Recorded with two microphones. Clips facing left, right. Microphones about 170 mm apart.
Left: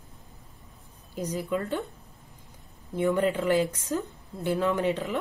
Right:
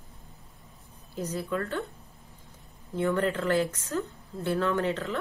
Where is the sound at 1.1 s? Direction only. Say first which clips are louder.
Left 2 dB; 15° left (ahead or behind).